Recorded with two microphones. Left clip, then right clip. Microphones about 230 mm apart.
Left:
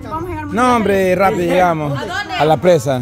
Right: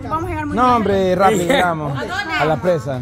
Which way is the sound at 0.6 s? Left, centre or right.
Centre.